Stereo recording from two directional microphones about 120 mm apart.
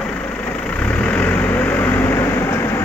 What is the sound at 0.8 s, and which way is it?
Vehicle, 10° left (ahead or behind).